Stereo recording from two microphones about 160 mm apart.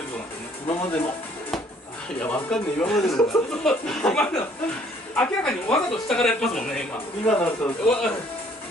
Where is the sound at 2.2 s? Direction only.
10° left (ahead or behind).